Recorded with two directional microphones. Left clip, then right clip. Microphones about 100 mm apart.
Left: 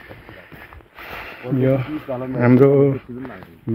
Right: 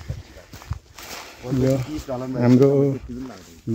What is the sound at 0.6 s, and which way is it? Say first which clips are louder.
Walk: left 2 dB; 20° right (ahead or behind).